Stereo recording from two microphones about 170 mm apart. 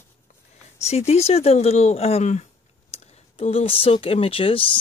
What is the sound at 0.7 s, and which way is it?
Speech, 40° left (ahead or behind).